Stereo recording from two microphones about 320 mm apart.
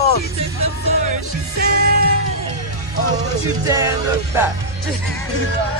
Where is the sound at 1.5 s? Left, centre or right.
Right.